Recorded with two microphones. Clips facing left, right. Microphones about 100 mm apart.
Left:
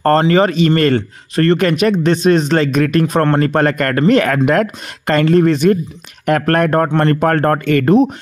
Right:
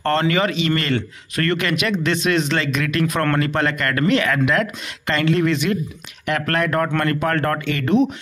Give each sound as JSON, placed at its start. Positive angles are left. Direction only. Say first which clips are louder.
{"t": 0.0, "sound": "speech", "louder": "left 7 dB", "side_deg": 40}
{"t": 6.9, "sound": "speech", "louder": "left 7 dB", "side_deg": 30}